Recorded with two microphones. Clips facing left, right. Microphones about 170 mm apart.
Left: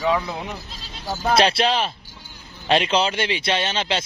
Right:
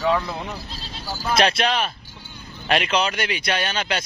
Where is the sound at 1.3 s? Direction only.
30° left (ahead or behind).